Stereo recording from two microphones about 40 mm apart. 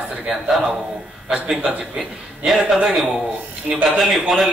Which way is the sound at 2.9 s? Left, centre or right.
Centre.